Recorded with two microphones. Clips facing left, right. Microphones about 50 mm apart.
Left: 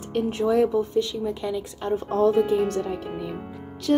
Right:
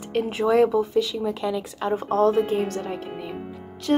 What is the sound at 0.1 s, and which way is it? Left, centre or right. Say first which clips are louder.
Speech: right 1 dB; right.